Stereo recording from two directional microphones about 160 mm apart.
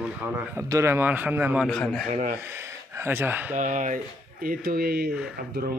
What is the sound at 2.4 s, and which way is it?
Speech, 15° right (ahead or behind).